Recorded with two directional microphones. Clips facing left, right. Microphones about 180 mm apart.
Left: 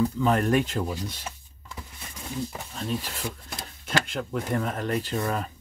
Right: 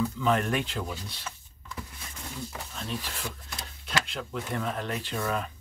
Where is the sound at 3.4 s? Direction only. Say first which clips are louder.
Left 3 dB; 50° left (ahead or behind).